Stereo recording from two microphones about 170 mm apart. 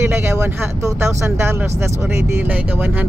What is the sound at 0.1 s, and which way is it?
Speech, 15° right (ahead or behind).